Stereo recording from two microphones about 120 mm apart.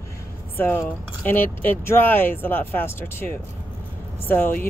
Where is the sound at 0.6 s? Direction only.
15° left (ahead or behind).